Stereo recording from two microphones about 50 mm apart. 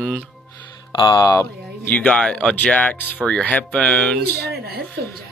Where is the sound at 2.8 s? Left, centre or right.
Left.